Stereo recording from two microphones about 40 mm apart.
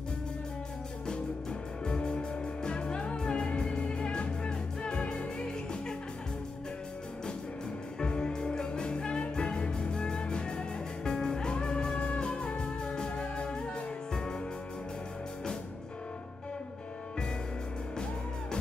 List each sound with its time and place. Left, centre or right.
1.9 s music: left
8.0 s music: left